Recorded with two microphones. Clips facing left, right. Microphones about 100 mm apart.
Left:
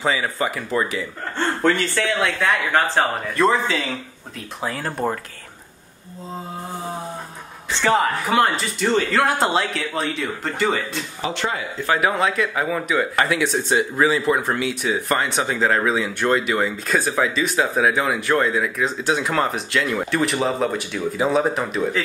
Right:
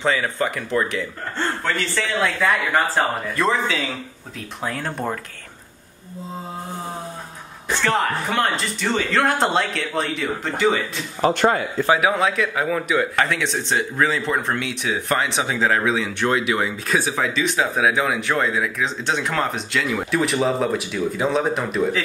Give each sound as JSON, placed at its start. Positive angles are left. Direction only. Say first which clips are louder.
{"t": 0.0, "sound": "speech", "louder": "right 1 dB", "side_deg": 5}
{"t": 2.1, "sound": "speech", "louder": "right 4 dB", "side_deg": 0}
{"t": 7.9, "sound": "speech", "louder": "left 4 dB", "side_deg": 5}
{"t": 11.1, "sound": "speech", "louder": "right 8 dB", "side_deg": -50}
{"t": 11.9, "sound": "speech", "louder": "right 1 dB", "side_deg": 0}